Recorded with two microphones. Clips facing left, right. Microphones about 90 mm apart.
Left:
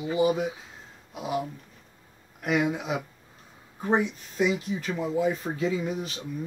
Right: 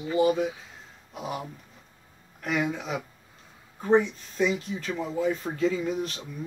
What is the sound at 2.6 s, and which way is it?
Speech, 10° left (ahead or behind).